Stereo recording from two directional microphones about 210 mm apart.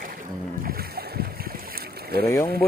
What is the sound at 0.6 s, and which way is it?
Boat, 45° right (ahead or behind).